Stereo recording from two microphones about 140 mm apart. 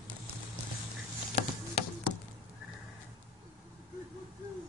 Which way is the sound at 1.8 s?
45° left (ahead or behind).